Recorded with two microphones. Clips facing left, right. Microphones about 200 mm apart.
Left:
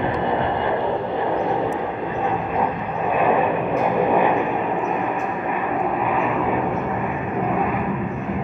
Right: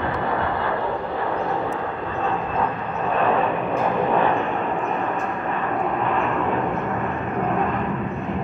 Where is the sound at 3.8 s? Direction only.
15° left (ahead or behind).